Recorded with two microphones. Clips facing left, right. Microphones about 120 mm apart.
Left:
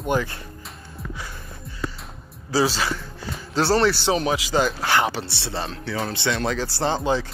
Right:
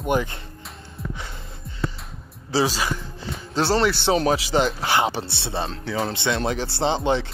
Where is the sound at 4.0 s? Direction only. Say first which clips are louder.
Right 2 dB; 30° right (ahead or behind).